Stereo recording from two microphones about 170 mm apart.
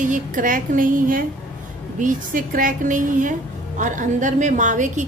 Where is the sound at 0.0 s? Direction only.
50° right (ahead or behind).